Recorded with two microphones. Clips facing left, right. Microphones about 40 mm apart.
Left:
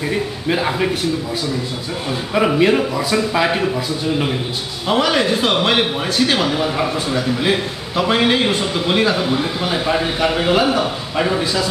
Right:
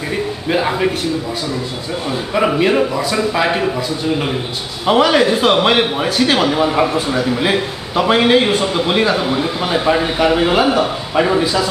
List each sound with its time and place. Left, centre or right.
0.1 s a man's voice: centre
2.3 s a man's voice: centre